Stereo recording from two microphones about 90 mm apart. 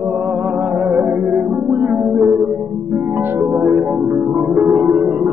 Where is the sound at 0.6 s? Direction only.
15° right (ahead or behind).